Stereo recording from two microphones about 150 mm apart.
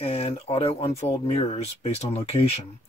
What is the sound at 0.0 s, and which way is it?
Speech, 45° left (ahead or behind).